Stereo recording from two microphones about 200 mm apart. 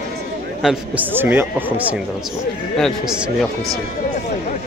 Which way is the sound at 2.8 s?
5° right (ahead or behind).